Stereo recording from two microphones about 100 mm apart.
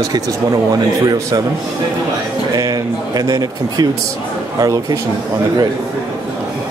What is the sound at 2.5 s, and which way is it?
Speech, 40° right (ahead or behind).